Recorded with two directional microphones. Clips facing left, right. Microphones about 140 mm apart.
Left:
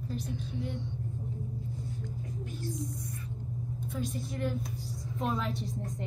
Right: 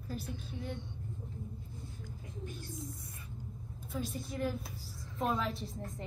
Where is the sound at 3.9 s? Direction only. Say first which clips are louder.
Left 1 dB; 5° right (ahead or behind).